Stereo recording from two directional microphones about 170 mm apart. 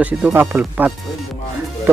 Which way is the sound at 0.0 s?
10° right (ahead or behind).